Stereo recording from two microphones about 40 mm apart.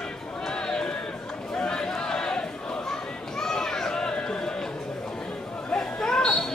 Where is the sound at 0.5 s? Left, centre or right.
Centre.